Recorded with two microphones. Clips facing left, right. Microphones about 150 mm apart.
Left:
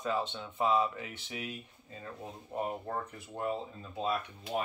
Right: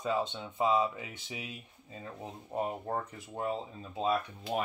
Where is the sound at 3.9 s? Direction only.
20° right (ahead or behind).